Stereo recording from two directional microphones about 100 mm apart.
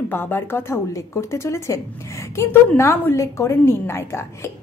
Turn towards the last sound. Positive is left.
turn(degrees=25)  # may be behind; listen again after turning